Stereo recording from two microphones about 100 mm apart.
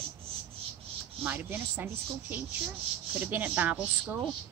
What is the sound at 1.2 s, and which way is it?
Speech, 20° right (ahead or behind).